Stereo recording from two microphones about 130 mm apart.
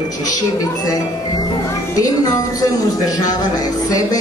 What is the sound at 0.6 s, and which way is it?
Speech, 30° left (ahead or behind).